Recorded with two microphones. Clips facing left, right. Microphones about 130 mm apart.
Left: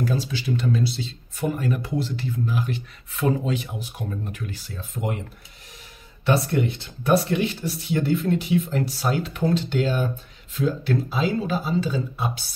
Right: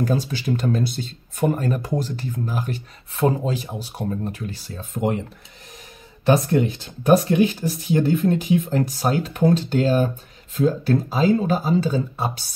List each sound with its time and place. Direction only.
0.0 s speech: 45° right (ahead or behind)
7.2 s speech: 40° right (ahead or behind)